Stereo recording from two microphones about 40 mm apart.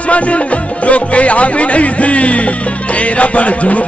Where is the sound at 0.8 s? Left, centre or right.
Left.